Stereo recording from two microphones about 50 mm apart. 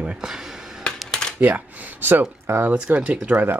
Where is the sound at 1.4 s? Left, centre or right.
Right.